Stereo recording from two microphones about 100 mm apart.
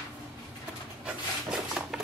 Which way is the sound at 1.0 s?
10° right (ahead or behind).